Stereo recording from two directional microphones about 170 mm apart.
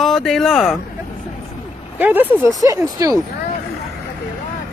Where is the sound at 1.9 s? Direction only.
10° right (ahead or behind).